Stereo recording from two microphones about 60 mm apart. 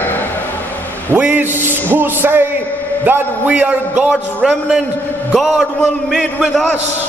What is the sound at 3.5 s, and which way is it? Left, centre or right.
A man's voice, right.